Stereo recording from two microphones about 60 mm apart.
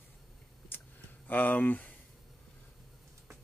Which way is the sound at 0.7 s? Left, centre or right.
Left.